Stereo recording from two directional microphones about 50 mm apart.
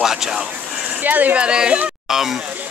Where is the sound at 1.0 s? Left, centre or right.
Right.